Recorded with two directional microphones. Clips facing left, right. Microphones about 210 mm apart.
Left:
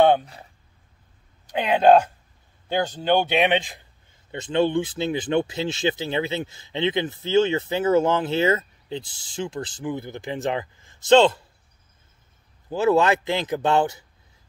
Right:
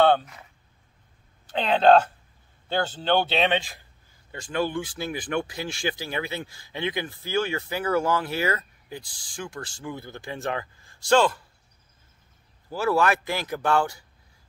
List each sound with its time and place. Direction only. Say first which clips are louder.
0.0 s a sound: left 2 dB; 15° left (ahead or behind)
1.5 s speech: left 2 dB; 10° left (ahead or behind)
12.6 s speech: left 4 dB; 20° left (ahead or behind)